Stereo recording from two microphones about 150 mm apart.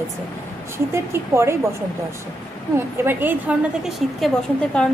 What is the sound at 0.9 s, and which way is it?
Speech, 20° right (ahead or behind).